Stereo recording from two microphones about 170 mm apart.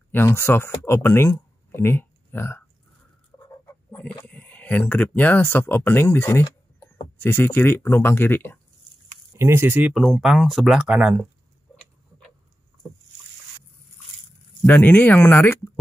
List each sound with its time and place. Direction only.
0.1 s speech: 15° left (ahead or behind)
3.3 s chicken: 25° left (ahead or behind)
4.2 s speech: 10° left (ahead or behind)
9.3 s speech: 15° right (ahead or behind)
14.7 s speech: 10° left (ahead or behind)